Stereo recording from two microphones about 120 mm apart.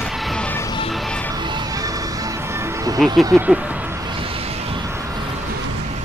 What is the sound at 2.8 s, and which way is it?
Music, 30° right (ahead or behind).